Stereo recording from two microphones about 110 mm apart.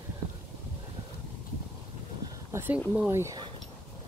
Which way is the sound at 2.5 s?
20° right (ahead or behind).